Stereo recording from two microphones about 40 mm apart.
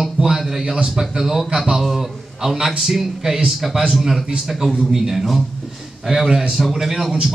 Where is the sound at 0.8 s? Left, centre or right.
Centre.